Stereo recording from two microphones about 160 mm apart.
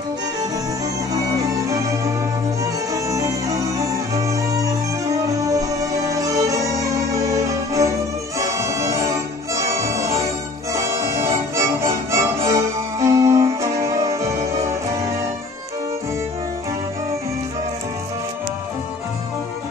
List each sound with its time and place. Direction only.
2.6 s music: 20° right (ahead or behind)